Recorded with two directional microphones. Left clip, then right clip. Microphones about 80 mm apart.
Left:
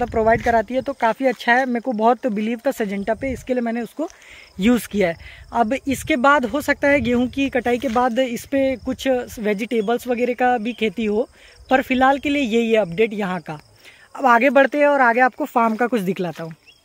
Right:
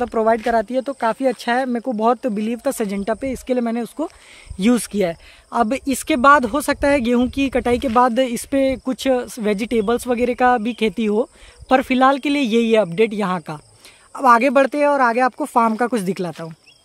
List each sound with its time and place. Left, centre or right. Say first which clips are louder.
0.1 s speech: left 1 dB; centre
2.7 s speech: even; right
3.0 s speech: even; right
3.8 s speech: right 1 dB; right
4.7 s speech: even; centre
5.5 s speech: right 1 dB; right
6.6 s speech: even; right
8.0 s speech: right 3 dB; right
14.2 s speech: right 1 dB; right; by 16.1 s centre